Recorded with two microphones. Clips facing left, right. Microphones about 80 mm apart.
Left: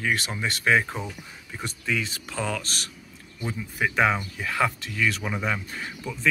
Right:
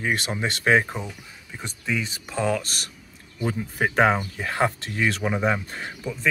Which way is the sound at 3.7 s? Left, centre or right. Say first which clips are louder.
Right 2 dB; right.